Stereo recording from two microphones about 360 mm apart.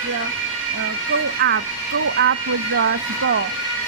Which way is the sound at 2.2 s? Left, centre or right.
Right.